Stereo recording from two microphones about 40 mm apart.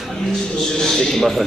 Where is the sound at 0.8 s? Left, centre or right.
Centre.